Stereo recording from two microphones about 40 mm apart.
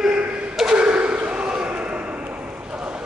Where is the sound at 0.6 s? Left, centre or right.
Right.